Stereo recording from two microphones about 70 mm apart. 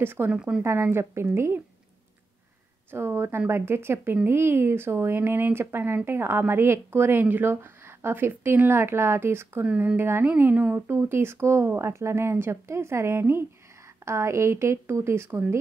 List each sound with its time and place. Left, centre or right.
0.0 s a woman's voice: right
0.3 s speech: centre
0.6 s a woman's voice: right
2.9 s a woman's voice: right
10.2 s a woman's voice: right